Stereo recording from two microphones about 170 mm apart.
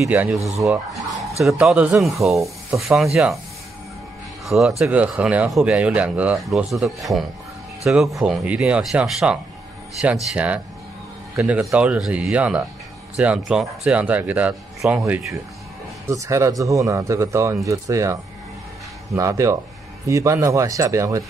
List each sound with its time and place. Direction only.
0.0 s speech: 5° right (ahead or behind)
1.4 s speech: centre (ahead or behind)
4.5 s speech: centre (ahead or behind); by 18.1 s 20° right (ahead or behind)
19.1 s speech: 20° right (ahead or behind)